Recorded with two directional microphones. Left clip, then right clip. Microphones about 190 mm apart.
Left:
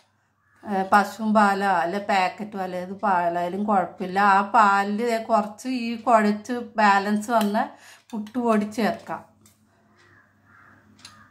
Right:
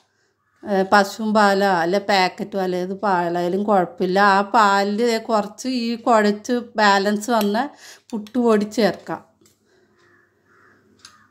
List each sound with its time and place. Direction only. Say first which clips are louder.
0.7 s speech: right 4 dB; 40° right (ahead or behind)